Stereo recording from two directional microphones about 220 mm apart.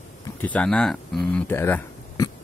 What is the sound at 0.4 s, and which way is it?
Speech, 5° left (ahead or behind).